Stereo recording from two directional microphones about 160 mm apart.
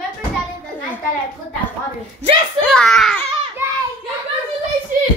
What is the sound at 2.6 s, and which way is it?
Speech, 5° left (ahead or behind).